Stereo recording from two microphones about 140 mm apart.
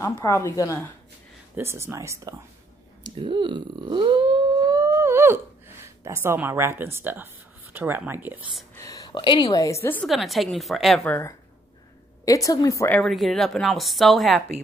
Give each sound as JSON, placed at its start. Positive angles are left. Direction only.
{"t": 0.2, "sound": "a woman's voice", "side_deg": 20}
{"t": 1.6, "sound": "speech", "side_deg": -20}
{"t": 3.0, "sound": "a sound", "side_deg": -35}
{"t": 6.0, "sound": "speech", "side_deg": -15}
{"t": 8.7, "sound": "a woman's voice", "side_deg": 25}
{"t": 10.0, "sound": "speech", "side_deg": 0}
{"t": 11.1, "sound": "a woman's voice", "side_deg": 15}
{"t": 12.9, "sound": "speech", "side_deg": 0}